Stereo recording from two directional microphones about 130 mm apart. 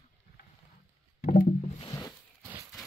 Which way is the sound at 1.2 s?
90° left.